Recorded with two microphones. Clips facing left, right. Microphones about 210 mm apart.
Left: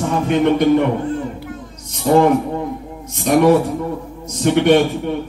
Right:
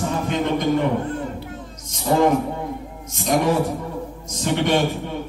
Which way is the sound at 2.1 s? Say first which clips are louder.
Left 6 dB; 50° left (ahead or behind).